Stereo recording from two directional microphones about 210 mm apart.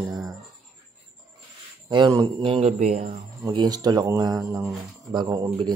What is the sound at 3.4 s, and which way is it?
Speech, 20° right (ahead or behind).